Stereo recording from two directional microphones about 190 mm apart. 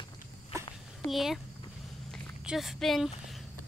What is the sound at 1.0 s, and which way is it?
Speech, centre (ahead or behind).